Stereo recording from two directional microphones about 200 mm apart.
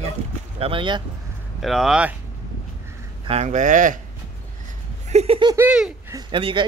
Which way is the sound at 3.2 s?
35° right (ahead or behind).